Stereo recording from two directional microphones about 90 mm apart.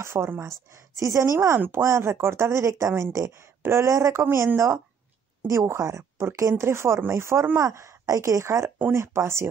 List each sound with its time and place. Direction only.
0.0 s speech: 30° right (ahead or behind)
5.5 s speech: 35° right (ahead or behind)